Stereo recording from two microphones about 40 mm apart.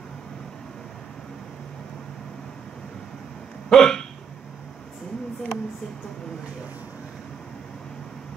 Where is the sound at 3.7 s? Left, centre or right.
Centre.